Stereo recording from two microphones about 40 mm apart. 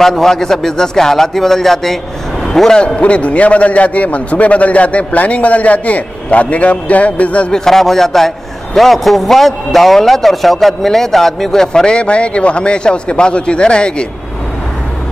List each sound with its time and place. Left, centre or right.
0.0 s a man's voice: centre
3.0 s a man's voice: left
7.5 s a man's voice: centre